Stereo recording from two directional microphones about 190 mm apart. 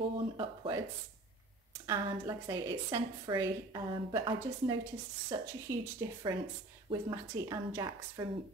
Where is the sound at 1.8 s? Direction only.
15° right (ahead or behind).